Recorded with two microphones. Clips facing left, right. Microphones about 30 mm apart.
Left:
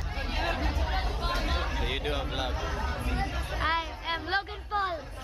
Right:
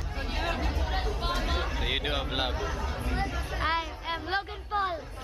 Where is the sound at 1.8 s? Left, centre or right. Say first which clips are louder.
Right 4 dB; centre.